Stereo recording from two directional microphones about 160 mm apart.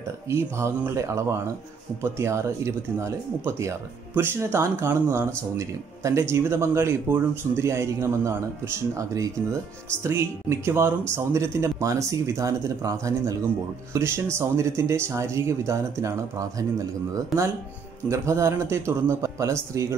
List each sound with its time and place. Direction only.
0.3 s speech: 15° right (ahead or behind)
18.0 s speech: 20° right (ahead or behind)